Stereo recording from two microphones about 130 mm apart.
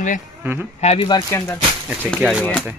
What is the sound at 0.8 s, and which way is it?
Speech, 55° left (ahead or behind).